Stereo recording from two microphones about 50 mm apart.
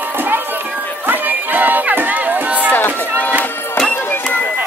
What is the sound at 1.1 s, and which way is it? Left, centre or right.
Run, right.